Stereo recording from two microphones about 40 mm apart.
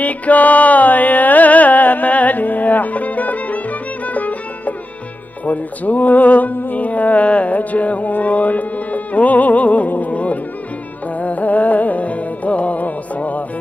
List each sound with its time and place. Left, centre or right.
0.0 s music: left